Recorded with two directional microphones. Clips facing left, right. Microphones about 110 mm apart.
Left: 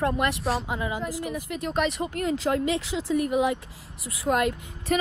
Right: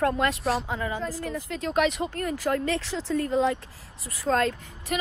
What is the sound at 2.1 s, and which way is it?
Speech, 20° left (ahead or behind).